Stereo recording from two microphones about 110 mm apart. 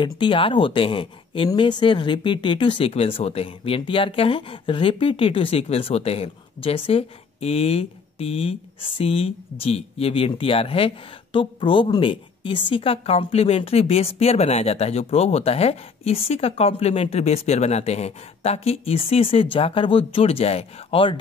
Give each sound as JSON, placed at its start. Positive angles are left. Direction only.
{"t": 0.0, "sound": "a woman's voice", "side_deg": 50}